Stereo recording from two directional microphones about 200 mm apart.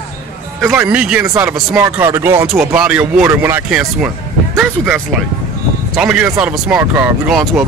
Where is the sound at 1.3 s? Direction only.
15° right (ahead or behind).